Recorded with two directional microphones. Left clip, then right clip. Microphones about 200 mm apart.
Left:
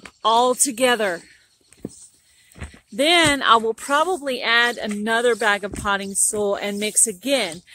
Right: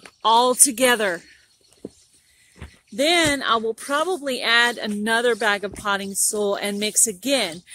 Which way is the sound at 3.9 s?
Centre (ahead or behind).